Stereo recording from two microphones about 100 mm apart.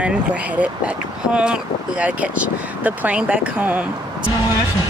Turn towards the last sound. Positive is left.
turn(degrees=-15)  # may be behind; listen again after turning